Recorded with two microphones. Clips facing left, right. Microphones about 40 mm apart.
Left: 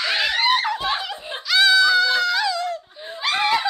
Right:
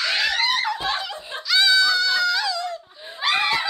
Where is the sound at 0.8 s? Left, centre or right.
Centre.